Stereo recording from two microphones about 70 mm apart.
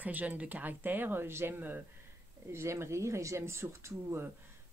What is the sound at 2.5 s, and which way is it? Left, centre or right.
Speech, right.